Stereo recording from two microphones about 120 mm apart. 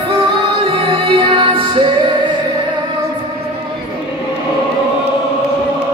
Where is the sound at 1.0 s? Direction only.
50° right (ahead or behind).